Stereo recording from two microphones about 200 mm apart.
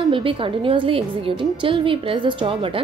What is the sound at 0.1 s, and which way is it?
A woman's voice, 25° right (ahead or behind).